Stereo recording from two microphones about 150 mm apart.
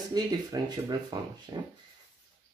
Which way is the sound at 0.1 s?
25° right (ahead or behind).